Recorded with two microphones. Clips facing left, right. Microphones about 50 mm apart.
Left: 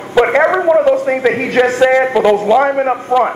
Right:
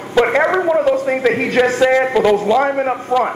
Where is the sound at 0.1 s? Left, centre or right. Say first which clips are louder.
Left 3 dB; centre.